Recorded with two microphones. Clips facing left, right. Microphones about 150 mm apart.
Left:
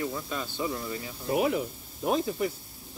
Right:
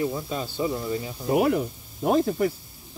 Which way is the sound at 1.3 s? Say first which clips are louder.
Right 5 dB; 60° right (ahead or behind).